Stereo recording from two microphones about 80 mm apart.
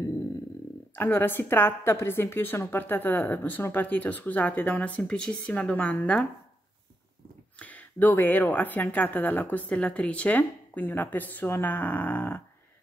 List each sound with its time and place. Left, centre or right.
0.9 s a woman's voice: left
7.5 s a woman's voice: centre